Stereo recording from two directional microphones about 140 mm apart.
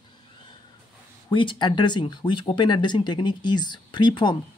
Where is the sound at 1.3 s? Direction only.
35° left (ahead or behind).